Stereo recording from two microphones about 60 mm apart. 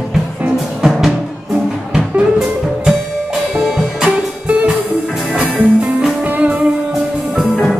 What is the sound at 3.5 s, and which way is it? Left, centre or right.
Music, centre.